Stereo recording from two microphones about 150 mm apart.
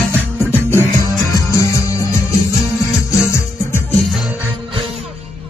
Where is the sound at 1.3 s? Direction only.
20° left (ahead or behind).